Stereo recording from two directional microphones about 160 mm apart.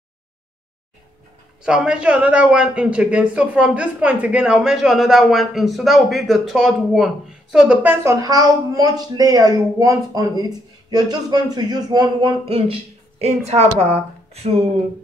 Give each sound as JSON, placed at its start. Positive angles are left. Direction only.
{"t": 1.6, "sound": "a man's voice", "side_deg": -5}